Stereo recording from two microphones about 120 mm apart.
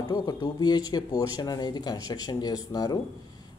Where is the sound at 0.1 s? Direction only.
35° left (ahead or behind).